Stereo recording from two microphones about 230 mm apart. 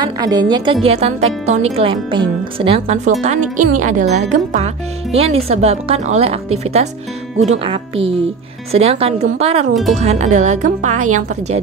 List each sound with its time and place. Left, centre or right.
0.0 s speech: centre